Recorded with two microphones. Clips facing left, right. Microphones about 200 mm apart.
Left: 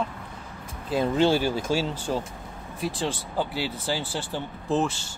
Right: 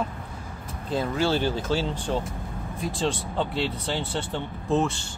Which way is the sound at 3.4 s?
5° left (ahead or behind).